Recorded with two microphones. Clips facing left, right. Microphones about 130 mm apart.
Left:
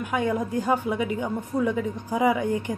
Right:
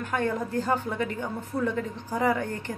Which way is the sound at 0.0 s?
10° left (ahead or behind).